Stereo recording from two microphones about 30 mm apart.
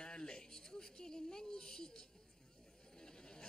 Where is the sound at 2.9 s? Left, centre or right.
Left.